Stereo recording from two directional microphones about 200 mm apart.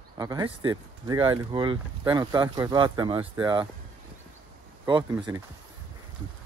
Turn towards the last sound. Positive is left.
turn(degrees=-15)  # may be behind; listen again after turning